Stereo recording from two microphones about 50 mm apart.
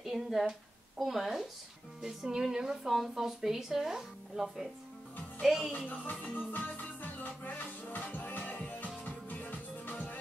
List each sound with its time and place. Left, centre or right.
0.0 s a woman's voice: centre
6.3 s music: left